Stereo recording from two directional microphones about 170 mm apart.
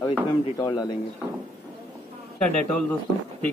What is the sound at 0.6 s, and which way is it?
Speech, 25° left (ahead or behind).